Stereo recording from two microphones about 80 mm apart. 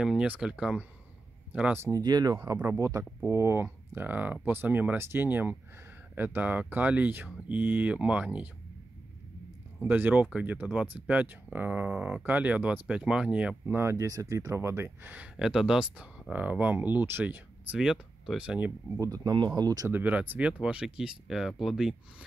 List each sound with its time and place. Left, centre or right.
0.0 s speech: centre
1.8 s speech: right
2.0 s speech: right; by 8.5 s centre
9.8 s speech: right
13.7 s speech: right
14.0 s speech: right
15.3 s speech: centre
16.0 s speech: centre
18.9 s speech: right
19.3 s speech: right
19.9 s speech: centre